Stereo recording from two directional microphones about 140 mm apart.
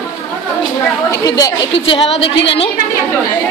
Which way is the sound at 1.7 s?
40° left (ahead or behind).